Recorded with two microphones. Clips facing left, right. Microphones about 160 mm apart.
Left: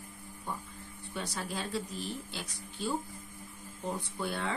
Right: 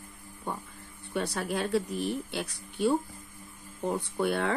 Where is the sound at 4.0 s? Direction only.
60° right (ahead or behind).